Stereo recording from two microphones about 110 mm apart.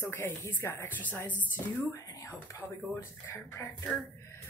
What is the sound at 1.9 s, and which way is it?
Speech, 30° left (ahead or behind).